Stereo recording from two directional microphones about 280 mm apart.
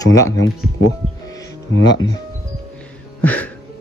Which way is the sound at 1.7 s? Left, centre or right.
Left.